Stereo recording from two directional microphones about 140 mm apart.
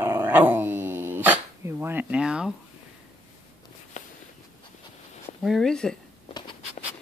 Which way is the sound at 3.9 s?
60° left (ahead or behind).